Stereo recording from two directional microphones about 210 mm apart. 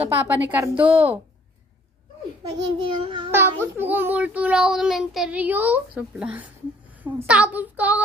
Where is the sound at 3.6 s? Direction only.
10° right (ahead or behind).